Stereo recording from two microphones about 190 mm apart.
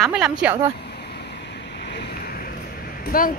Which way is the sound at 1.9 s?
55° left (ahead or behind).